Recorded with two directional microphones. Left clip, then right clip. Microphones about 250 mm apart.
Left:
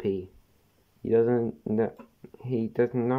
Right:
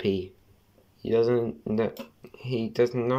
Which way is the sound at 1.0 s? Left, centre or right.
Left.